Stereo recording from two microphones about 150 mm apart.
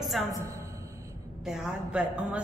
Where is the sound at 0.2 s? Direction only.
Centre (ahead or behind).